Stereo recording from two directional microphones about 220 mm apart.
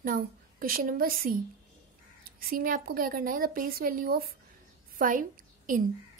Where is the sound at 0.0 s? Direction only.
40° right (ahead or behind).